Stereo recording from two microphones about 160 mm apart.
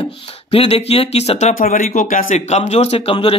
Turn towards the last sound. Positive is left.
turn(degrees=35)  # may be behind; listen again after turning